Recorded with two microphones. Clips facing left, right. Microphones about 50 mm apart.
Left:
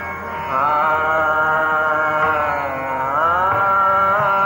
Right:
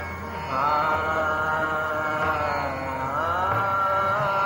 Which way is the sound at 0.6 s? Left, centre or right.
Left.